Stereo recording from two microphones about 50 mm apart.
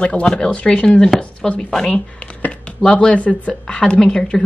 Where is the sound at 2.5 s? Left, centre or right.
Left.